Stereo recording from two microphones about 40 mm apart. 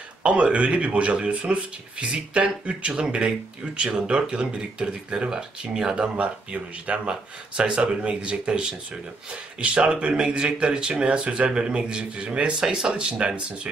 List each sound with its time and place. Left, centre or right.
0.2 s speech: right
6.1 s speech: right